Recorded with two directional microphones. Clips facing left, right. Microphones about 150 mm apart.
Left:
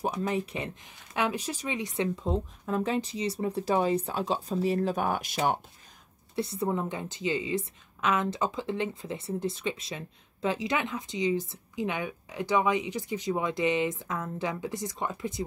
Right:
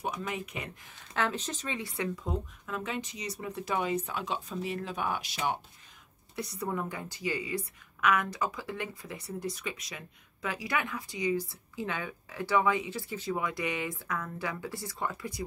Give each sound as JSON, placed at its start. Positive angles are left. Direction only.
{"t": 0.0, "sound": "speech", "side_deg": 30}
{"t": 0.8, "sound": "speech", "side_deg": 15}
{"t": 6.3, "sound": "a woman's voice", "side_deg": 25}